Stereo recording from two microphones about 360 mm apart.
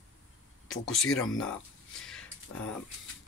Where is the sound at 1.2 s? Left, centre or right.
Left.